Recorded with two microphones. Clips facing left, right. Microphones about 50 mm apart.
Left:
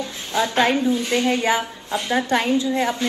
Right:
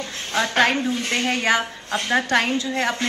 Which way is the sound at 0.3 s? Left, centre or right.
Right.